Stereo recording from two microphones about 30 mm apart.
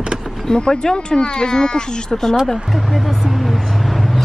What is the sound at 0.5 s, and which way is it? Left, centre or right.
Speech, left.